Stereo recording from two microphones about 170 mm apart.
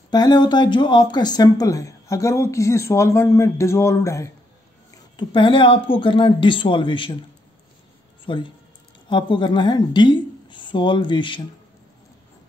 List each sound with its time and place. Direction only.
0.1 s speech: 25° left (ahead or behind)
4.9 s speech: 25° left (ahead or behind)
8.3 s a woman's voice: 30° left (ahead or behind)